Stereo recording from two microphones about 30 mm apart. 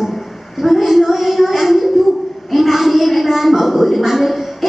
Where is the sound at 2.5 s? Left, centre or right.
Centre.